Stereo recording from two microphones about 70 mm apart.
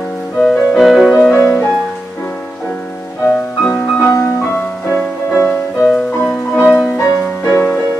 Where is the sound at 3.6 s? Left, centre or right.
Centre.